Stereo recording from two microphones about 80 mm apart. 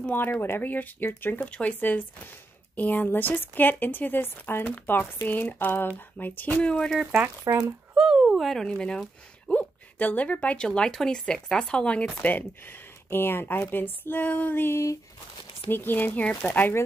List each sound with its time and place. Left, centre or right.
0.0 s speech: left
1.4 s speech: centre
7.5 s a child's voice: right
8.1 s speech: centre; by 16.8 s left